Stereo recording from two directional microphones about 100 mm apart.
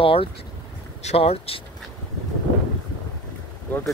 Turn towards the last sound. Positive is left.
turn(degrees=15)  # may be behind; listen again after turning